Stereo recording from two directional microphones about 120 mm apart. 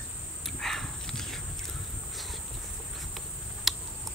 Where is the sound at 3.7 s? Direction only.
Centre (ahead or behind).